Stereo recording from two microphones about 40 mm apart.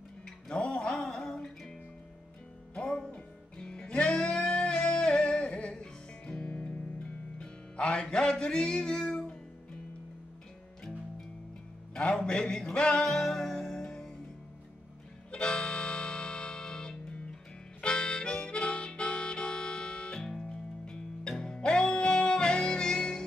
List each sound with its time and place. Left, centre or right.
0.9 s music: centre
2.7 s music: left
11.9 s music: left
13.0 s music: centre
15.3 s music: left
17.8 s harmonica: left
20.4 s music: left